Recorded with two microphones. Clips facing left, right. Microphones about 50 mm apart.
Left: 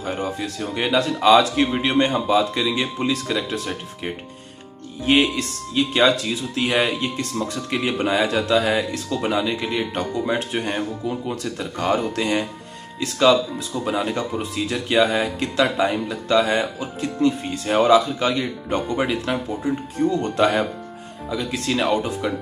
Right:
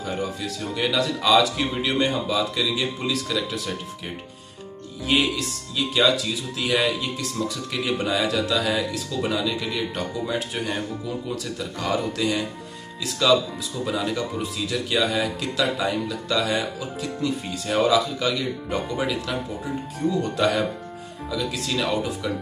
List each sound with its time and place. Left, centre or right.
0.0 s speech: left
8.9 s speech: left
9.4 s speech: left
20.3 s speech: left